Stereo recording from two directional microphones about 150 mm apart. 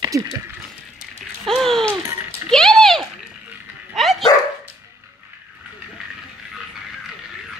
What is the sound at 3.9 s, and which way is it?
Dog, centre (ahead or behind).